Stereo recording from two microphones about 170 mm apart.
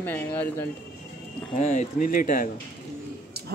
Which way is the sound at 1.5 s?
45° left (ahead or behind).